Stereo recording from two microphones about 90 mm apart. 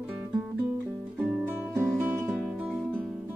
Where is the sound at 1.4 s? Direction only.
20° right (ahead or behind).